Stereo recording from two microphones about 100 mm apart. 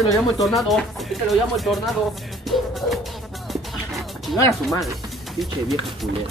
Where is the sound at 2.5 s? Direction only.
Centre (ahead or behind).